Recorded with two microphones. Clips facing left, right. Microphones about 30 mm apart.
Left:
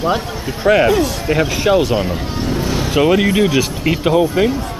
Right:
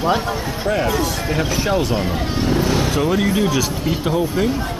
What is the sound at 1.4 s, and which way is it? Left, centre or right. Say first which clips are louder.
Speech: left 6 dB; centre.